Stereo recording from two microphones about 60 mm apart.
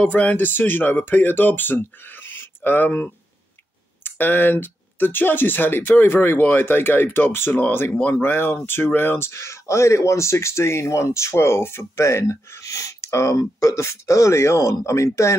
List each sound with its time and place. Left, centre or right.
0.0 s speech: left